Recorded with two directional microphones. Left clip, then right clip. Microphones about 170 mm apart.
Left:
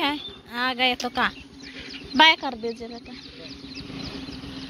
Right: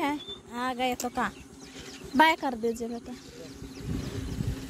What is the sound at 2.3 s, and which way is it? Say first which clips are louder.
Speech: left 6 dB; 30° right (ahead or behind).